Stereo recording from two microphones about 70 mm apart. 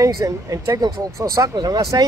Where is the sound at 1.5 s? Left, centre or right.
Right.